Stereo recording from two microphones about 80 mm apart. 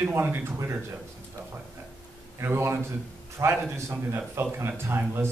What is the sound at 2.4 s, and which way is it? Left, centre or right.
A man's voice, right.